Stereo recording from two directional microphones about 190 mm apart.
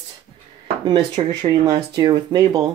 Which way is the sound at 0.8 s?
20° right (ahead or behind).